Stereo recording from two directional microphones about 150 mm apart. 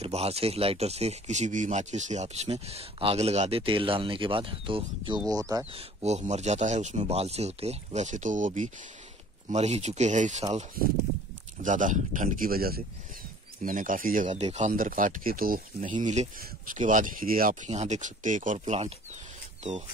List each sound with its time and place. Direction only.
0.0 s speech: 45° right (ahead or behind); by 5.6 s 25° right (ahead or behind)
5.7 s speech: 45° right (ahead or behind)
11.6 s speech: 55° right (ahead or behind); by 12.8 s 85° right
13.6 s speech: 60° right (ahead or behind)
17.6 s speech: 50° right (ahead or behind)